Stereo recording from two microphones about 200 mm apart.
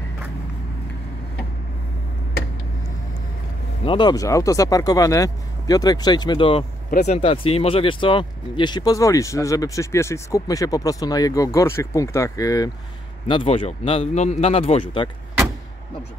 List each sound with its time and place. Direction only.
3.8 s speech: 25° left (ahead or behind)
6.9 s speech: 35° left (ahead or behind)